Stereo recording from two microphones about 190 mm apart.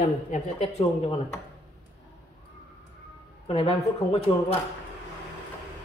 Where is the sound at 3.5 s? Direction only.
30° left (ahead or behind).